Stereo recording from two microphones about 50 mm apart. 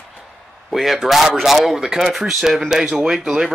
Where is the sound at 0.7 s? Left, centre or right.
Centre.